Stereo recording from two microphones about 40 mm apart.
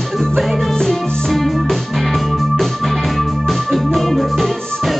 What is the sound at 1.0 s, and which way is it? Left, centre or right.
Music, centre.